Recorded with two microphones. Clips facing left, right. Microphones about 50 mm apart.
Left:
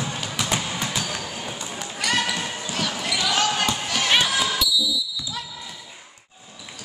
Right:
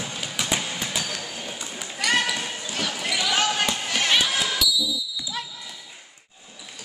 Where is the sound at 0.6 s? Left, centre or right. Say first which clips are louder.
Left 2 dB; centre.